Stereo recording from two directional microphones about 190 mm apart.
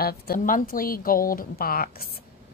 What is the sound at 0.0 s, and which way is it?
A woman's voice, 50° left (ahead or behind).